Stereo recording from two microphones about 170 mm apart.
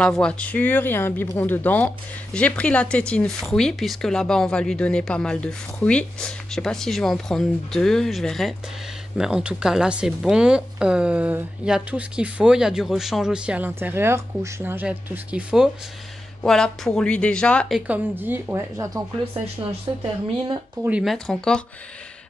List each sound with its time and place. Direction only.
0.0 s speech: 5° left (ahead or behind); by 18.9 s 15° right (ahead or behind)
19.9 s a woman's voice: 25° right (ahead or behind)
20.8 s speech: 5° right (ahead or behind)